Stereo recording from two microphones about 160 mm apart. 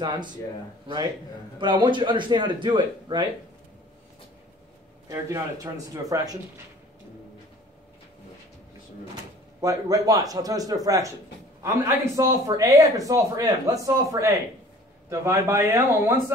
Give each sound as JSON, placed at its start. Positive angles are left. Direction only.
{"t": 0.0, "sound": "speech", "side_deg": -30}
{"t": 5.0, "sound": "speech", "side_deg": -20}
{"t": 9.6, "sound": "a man's voice", "side_deg": -20}